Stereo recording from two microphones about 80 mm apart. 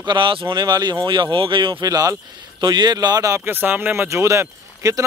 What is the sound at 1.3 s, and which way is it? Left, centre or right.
Speech, right.